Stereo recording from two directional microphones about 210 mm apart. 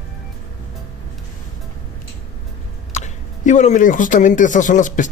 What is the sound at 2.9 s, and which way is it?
Speech, 35° left (ahead or behind).